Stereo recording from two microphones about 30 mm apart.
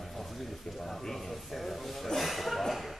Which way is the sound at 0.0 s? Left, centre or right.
Centre.